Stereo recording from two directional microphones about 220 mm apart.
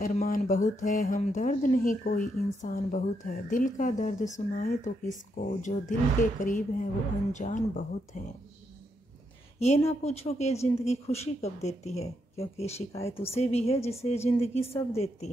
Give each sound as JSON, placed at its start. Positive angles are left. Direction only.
{"t": 0.0, "sound": "speech", "side_deg": 40}
{"t": 9.6, "sound": "speech", "side_deg": 30}